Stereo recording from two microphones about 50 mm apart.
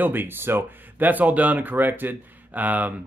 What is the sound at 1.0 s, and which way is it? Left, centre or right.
Speech, right.